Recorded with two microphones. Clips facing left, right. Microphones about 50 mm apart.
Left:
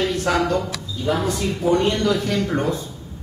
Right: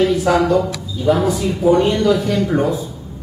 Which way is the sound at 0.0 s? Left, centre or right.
Centre.